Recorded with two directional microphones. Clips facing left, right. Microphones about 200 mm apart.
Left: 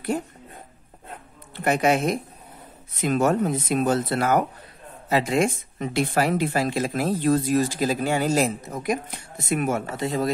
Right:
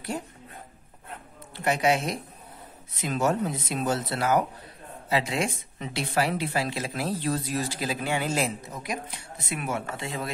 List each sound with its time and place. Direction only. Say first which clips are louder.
1.6 s speech: left 4 dB; 50° left (ahead or behind)